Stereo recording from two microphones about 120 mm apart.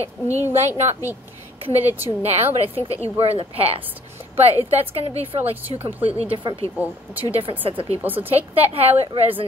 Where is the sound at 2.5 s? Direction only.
55° right (ahead or behind).